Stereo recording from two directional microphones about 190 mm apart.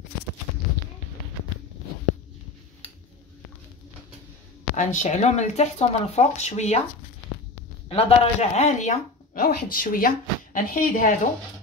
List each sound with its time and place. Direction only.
4.7 s speech: 40° left (ahead or behind)
7.9 s speech: 30° left (ahead or behind)